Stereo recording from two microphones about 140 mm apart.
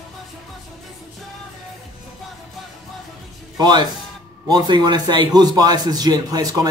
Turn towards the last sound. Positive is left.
turn(degrees=-25)  # may be behind; listen again after turning